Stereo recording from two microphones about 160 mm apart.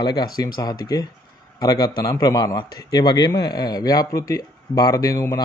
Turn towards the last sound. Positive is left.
turn(degrees=20)  # may be behind; listen again after turning